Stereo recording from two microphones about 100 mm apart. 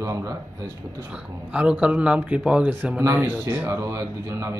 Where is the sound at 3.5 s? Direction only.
25° right (ahead or behind).